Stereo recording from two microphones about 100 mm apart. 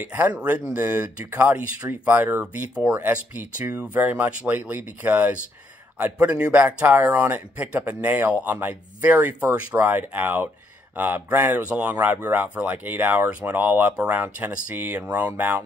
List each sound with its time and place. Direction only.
0.0 s speech: 15° right (ahead or behind)